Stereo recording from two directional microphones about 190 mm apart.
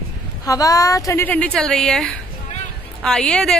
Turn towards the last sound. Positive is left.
turn(degrees=5)  # may be behind; listen again after turning